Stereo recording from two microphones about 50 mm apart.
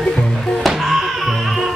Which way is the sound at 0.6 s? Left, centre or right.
Centre.